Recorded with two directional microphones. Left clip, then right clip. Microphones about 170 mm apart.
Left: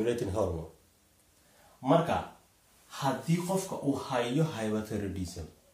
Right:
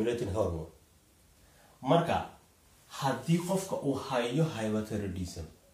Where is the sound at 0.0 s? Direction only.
20° left (ahead or behind).